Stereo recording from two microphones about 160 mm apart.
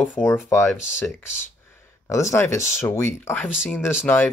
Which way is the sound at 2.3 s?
15° left (ahead or behind).